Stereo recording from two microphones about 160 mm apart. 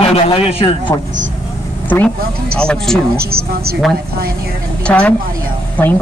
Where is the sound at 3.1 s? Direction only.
75° right (ahead or behind).